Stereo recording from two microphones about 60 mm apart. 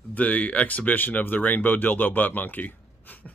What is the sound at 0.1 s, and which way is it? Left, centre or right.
Speech, left.